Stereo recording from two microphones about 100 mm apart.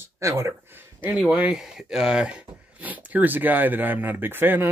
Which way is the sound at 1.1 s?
15° right (ahead or behind).